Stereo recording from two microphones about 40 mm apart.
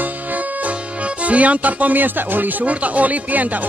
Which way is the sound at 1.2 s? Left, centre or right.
Right.